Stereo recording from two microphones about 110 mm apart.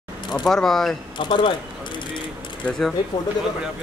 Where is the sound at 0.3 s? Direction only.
Centre (ahead or behind).